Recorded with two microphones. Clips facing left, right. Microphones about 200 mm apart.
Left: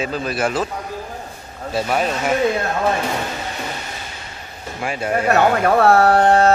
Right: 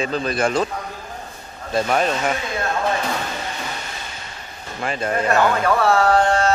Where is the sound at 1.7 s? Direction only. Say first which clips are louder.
Right 1 dB; 5° left (ahead or behind).